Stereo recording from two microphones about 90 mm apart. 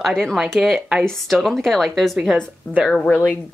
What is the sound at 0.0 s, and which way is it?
A woman's voice, 5° left (ahead or behind).